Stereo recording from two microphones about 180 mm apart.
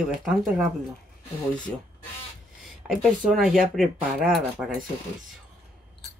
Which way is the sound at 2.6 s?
Centre (ahead or behind).